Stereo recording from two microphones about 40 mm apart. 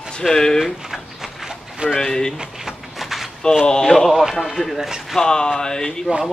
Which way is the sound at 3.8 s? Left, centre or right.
Centre.